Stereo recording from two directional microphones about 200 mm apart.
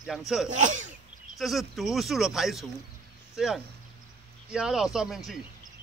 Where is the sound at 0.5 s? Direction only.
40° right (ahead or behind).